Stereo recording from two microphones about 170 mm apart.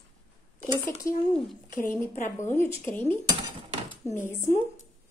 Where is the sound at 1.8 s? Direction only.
15° left (ahead or behind).